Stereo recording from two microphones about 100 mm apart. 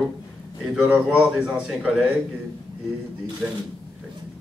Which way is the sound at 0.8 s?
10° right (ahead or behind).